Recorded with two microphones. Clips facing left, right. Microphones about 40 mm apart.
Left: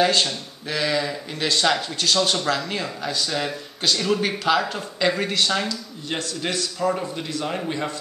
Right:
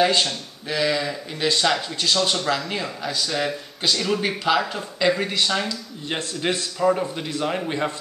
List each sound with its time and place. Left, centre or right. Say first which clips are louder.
0.0 s speech: even; centre
6.0 s a man's voice: right 2 dB; right
6.9 s a man's voice: right 3 dB; centre